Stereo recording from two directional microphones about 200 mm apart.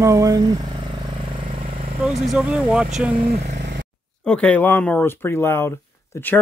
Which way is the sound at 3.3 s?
55° right (ahead or behind).